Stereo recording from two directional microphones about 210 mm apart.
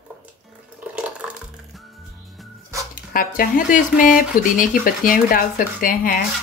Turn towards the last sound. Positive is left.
turn(degrees=40)  # may be behind; listen again after turning